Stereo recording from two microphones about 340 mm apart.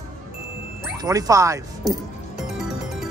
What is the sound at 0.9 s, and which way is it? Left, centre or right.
Speech, centre.